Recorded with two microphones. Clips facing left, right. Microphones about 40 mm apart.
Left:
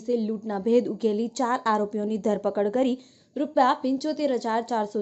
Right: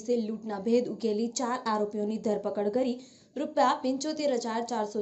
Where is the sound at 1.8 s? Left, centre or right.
Left.